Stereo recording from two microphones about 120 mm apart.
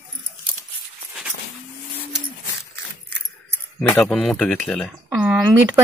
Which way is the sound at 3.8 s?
10° left (ahead or behind).